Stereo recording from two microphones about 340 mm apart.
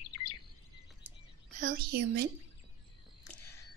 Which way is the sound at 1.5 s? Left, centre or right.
Right.